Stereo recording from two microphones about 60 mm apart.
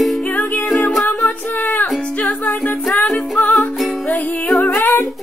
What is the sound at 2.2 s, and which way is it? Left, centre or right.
Music, left.